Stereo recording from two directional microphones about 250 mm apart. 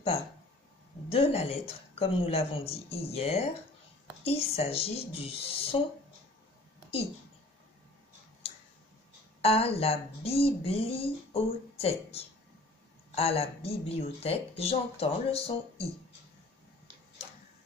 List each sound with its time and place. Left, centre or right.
1.0 s speech: left
9.4 s speech: left